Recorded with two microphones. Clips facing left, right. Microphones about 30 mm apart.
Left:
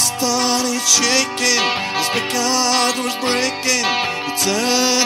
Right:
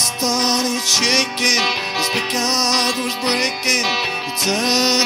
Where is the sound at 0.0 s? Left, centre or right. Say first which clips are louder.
Even; right.